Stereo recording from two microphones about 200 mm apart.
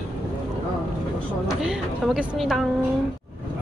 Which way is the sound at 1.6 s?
5° right (ahead or behind).